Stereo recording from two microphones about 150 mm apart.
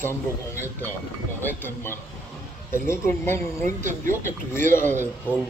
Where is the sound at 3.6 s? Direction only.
60° right (ahead or behind).